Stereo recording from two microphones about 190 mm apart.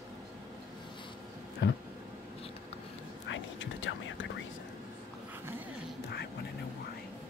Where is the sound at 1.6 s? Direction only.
75° left (ahead or behind).